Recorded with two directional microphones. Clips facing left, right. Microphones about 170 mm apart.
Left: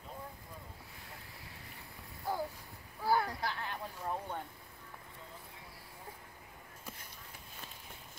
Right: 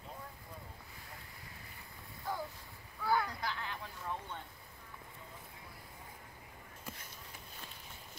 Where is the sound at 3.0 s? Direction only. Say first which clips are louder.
Left 2 dB; 35° left (ahead or behind).